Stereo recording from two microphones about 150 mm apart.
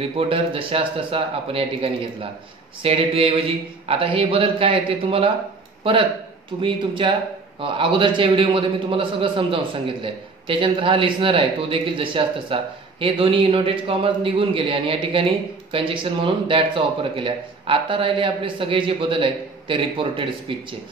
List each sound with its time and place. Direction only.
0.0 s a man's voice: 40° right (ahead or behind)
6.6 s a man's voice: 35° right (ahead or behind)